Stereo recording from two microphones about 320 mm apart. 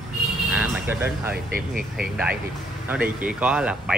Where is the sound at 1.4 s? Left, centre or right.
Right.